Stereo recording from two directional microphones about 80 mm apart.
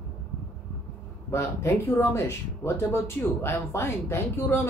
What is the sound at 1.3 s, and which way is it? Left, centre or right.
A man's voice, left.